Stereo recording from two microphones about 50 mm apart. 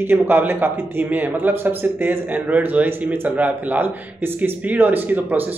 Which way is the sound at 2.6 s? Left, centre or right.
Right.